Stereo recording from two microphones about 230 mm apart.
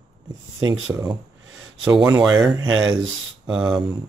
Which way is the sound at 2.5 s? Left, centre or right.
Centre.